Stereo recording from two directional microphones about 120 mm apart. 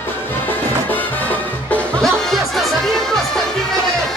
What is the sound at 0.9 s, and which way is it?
Music, 15° left (ahead or behind).